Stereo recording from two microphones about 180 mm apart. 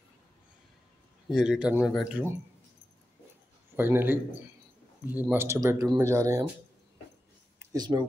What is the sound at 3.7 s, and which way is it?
Speech, 10° right (ahead or behind).